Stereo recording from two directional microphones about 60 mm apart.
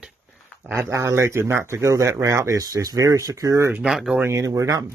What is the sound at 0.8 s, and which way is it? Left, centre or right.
Speech, right.